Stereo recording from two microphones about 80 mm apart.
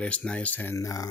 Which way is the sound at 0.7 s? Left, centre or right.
Left.